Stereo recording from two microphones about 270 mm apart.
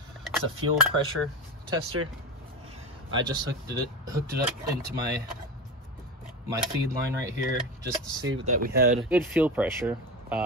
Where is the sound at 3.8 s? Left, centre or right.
Centre.